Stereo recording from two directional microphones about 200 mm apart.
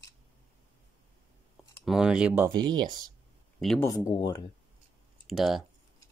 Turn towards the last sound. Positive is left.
turn(degrees=0)  # may be behind; listen again after turning